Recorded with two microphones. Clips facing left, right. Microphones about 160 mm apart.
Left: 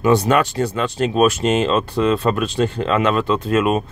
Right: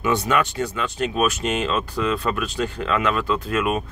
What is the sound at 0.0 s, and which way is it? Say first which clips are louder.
Speech: left 6 dB; 35° left (ahead or behind).